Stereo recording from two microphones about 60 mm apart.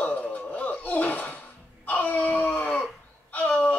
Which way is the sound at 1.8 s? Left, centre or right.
Left.